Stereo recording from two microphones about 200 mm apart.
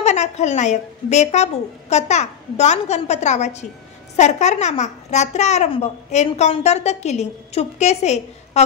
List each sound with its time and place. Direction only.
0.0 s a child's voice: 35° left (ahead or behind)